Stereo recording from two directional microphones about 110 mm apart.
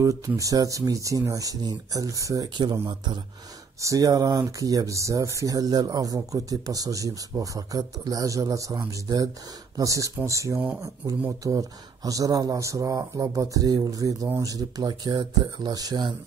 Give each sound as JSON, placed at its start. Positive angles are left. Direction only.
{"t": 0.0, "sound": "speech", "side_deg": -30}
{"t": 2.5, "sound": "speech", "side_deg": -45}
{"t": 3.8, "sound": "speech", "side_deg": -30}